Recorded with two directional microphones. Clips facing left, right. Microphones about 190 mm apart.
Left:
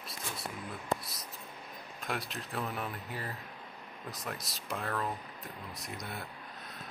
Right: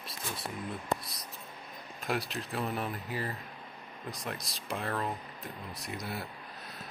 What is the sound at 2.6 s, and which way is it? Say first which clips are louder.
Speech: right 4 dB; 25° right (ahead or behind).